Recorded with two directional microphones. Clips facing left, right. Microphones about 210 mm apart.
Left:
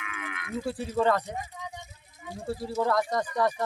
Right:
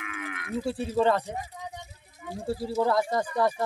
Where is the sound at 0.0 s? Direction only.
35° right (ahead or behind).